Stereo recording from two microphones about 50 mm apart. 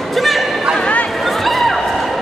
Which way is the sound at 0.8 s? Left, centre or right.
Left.